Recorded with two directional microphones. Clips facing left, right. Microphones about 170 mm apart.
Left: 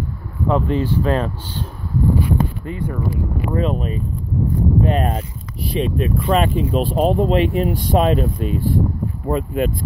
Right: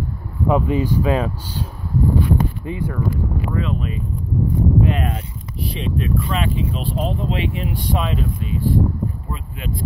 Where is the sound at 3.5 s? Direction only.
40° left (ahead or behind).